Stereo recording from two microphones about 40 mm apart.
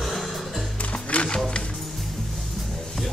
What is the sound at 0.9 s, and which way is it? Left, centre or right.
Music, left.